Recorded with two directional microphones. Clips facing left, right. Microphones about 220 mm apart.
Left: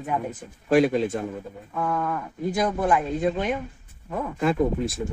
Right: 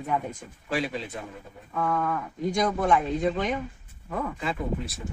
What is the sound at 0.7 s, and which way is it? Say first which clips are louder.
Speech: left 11 dB; 50° left (ahead or behind).